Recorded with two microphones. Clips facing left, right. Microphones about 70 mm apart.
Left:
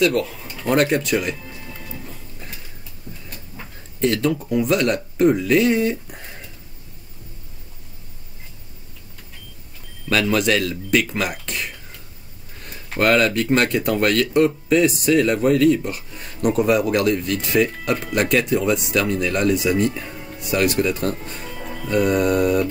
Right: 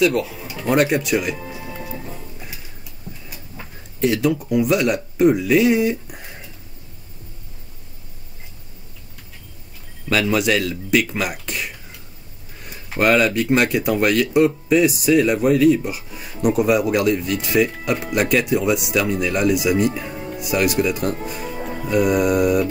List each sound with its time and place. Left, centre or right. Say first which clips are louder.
0.0 s speech: right 1 dB; centre
1.7 s music: right 5 dB; right
2.3 s tick-tock: right 1 dB; centre
3.3 s speech: even; centre
10.0 s speech: even; centre
21.5 s music: right 4 dB; right
21.8 s speech: right 1 dB; centre